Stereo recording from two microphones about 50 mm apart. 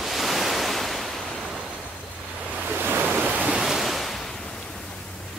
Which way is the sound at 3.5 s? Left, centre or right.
Centre.